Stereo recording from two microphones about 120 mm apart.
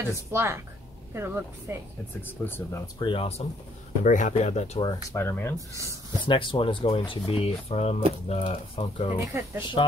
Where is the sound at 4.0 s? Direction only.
90° left; by 4.8 s 65° left (ahead or behind).